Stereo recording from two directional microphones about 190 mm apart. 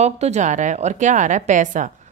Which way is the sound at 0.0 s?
35° right (ahead or behind).